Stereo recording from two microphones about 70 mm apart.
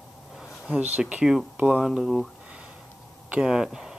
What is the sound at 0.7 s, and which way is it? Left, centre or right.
Speech, centre.